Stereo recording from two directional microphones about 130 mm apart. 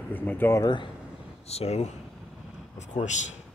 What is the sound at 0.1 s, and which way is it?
Speech, 15° left (ahead or behind).